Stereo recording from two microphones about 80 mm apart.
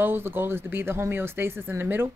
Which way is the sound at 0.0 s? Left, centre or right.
Right.